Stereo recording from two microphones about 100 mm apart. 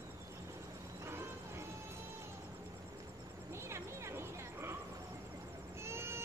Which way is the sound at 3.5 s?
25° right (ahead or behind).